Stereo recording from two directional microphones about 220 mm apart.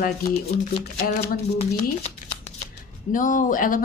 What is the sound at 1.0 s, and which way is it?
Speech, 40° left (ahead or behind).